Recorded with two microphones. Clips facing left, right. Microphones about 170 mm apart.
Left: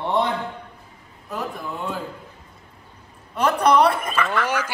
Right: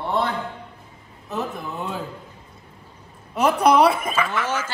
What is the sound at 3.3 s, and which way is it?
Speech, 5° right (ahead or behind).